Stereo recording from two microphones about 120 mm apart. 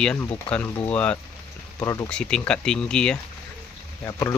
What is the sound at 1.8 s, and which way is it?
Speech, 25° left (ahead or behind).